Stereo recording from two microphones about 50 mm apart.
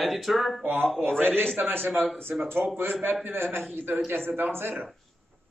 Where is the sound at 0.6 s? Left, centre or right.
Right.